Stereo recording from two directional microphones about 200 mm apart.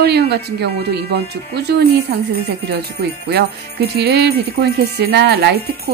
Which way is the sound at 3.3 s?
50° right (ahead or behind).